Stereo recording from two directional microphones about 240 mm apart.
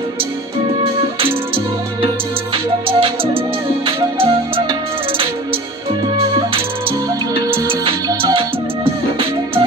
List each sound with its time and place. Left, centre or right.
2.5 s music: right
7.6 s music: right